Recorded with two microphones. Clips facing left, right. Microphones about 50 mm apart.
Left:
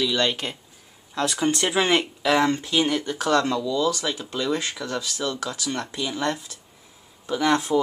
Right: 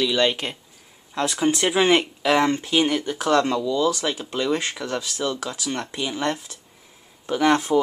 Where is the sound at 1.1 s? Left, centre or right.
Right.